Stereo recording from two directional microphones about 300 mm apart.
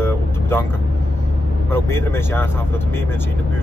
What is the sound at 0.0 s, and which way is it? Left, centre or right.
Vehicle, centre.